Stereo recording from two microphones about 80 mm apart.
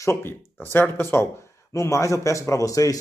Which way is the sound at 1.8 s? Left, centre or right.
Left.